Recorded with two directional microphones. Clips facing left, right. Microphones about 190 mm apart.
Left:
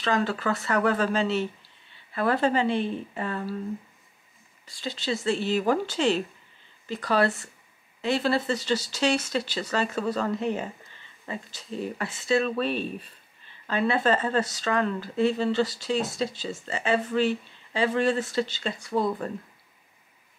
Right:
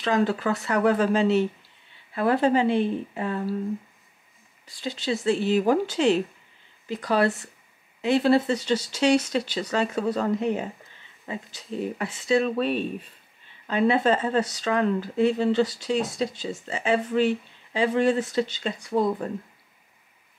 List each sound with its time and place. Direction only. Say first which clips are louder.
0.0 s speech: right 3 dB; 5° right (ahead or behind)
4.8 s speech: right 3 dB; 5° right (ahead or behind)
8.5 s speech: right 2 dB; 5° left (ahead or behind)
9.9 s speech: right 3 dB; 15° right (ahead or behind)
13.8 s speech: right 3 dB; 5° right (ahead or behind)